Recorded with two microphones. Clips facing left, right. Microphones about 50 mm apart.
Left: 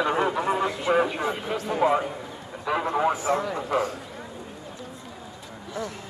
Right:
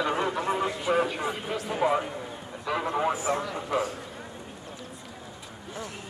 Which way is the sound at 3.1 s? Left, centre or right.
Left.